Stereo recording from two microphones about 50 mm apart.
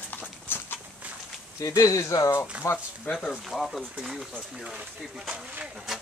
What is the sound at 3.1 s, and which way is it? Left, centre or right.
Speech, centre.